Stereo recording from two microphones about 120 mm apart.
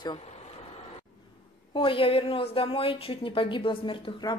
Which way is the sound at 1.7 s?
45° left (ahead or behind).